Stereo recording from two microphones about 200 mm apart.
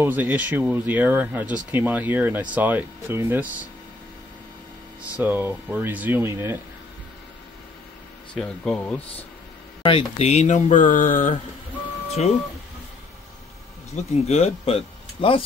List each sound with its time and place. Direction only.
0.0 s speech: 10° right (ahead or behind)
5.1 s speech: 10° right (ahead or behind)
8.4 s speech: 5° left (ahead or behind)
9.8 s speech: 30° left (ahead or behind)
13.9 s speech: 35° left (ahead or behind)